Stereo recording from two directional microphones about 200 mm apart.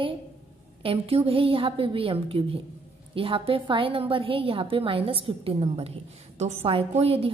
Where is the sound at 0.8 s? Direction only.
30° right (ahead or behind).